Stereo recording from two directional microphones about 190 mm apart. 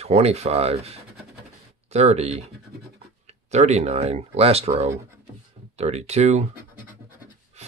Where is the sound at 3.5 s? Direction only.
35° right (ahead or behind).